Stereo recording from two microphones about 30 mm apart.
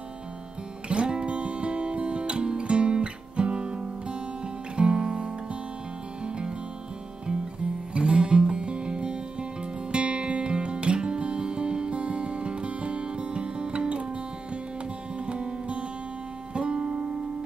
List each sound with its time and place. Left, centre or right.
0.8 s music: right
7.9 s music: right